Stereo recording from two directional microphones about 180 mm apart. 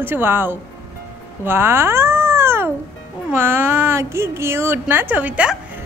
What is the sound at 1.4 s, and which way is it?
Cat, 15° right (ahead or behind).